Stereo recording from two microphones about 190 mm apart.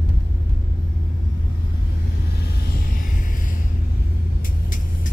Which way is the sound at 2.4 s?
55° left (ahead or behind).